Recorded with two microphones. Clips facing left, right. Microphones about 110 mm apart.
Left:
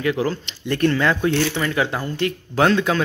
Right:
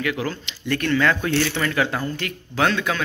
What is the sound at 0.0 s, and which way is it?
A man's voice, 30° left (ahead or behind).